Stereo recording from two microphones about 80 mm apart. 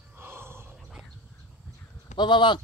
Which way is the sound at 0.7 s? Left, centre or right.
Centre.